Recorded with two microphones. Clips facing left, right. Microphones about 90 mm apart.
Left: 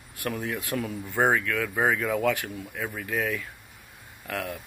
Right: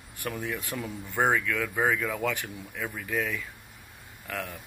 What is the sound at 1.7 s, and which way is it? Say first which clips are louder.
Speech: left 3 dB; 15° left (ahead or behind).